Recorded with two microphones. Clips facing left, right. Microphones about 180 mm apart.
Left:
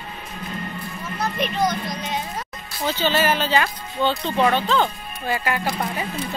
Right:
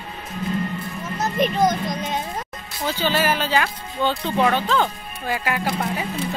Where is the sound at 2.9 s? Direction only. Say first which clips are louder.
Left 1 dB; 10° right (ahead or behind).